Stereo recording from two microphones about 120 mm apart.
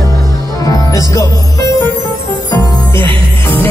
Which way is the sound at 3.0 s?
15° left (ahead or behind).